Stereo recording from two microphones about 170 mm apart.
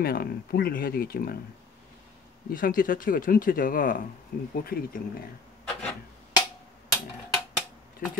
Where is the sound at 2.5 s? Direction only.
55° left (ahead or behind).